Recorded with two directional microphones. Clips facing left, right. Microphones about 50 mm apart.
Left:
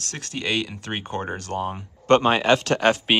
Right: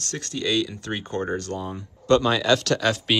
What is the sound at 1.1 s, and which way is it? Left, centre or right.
Speech, centre.